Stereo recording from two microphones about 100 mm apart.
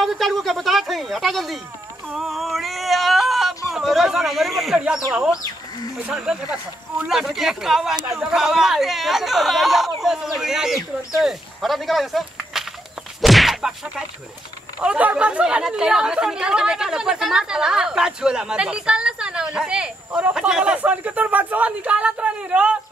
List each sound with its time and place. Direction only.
0.0 s speech: centre (ahead or behind)
6.0 s speech: 10° right (ahead or behind)
13.2 s a sound: centre (ahead or behind)
14.8 s speech: 10° right (ahead or behind)